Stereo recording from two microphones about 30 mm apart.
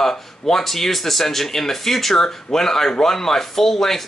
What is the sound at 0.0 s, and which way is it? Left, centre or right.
Speech, centre.